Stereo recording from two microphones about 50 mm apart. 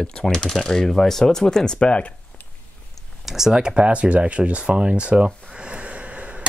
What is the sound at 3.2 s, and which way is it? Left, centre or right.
Speech, centre.